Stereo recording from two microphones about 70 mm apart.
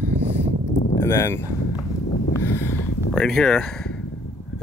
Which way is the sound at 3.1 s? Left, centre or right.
Centre.